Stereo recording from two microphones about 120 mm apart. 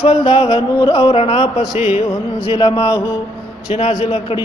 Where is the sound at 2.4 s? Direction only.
45° left (ahead or behind).